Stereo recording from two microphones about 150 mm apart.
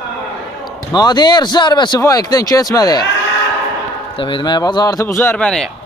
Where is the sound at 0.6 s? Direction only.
25° left (ahead or behind).